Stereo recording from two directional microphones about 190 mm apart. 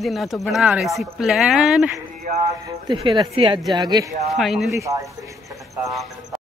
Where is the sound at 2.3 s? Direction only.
15° right (ahead or behind).